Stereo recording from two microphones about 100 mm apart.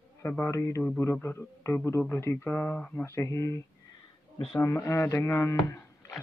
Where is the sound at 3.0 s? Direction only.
25° left (ahead or behind).